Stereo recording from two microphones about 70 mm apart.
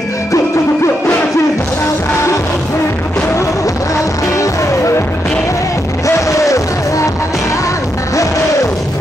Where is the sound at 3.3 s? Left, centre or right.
Left.